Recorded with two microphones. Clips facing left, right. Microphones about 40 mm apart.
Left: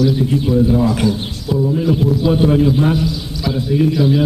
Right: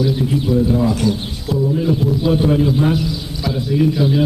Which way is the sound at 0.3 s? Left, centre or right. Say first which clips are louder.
Left 2 dB; centre.